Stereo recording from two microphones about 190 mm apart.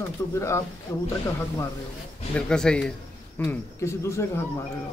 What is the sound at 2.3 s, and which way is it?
Speech, 5° left (ahead or behind).